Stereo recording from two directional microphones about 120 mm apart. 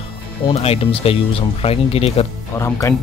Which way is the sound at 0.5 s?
55° left (ahead or behind).